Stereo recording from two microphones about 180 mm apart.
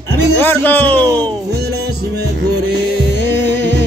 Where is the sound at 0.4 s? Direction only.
10° left (ahead or behind).